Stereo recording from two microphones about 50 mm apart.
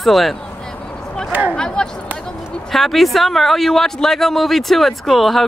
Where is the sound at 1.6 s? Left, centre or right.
Centre.